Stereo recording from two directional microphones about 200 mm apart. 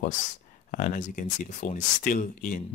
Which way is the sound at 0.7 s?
40° left (ahead or behind).